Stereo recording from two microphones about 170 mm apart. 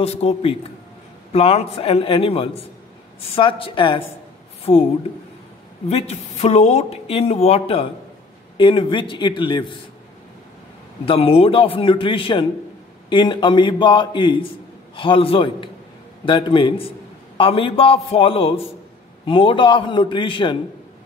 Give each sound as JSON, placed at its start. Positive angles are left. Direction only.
{"t": 0.0, "sound": "speech", "side_deg": 35}
{"t": 5.9, "sound": "a man's voice", "side_deg": 40}
{"t": 11.1, "sound": "a man's voice", "side_deg": 35}